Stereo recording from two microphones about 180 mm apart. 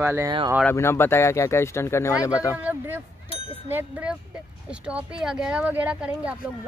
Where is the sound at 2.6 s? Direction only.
10° right (ahead or behind).